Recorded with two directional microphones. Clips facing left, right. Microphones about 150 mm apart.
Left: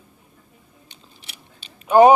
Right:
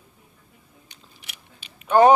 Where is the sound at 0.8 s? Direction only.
30° left (ahead or behind).